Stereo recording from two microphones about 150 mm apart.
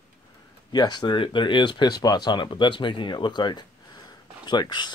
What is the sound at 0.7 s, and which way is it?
Speech, 30° left (ahead or behind).